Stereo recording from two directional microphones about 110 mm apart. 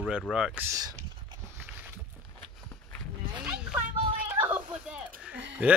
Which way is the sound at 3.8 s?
15° right (ahead or behind).